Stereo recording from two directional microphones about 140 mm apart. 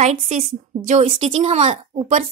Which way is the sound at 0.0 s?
50° right (ahead or behind).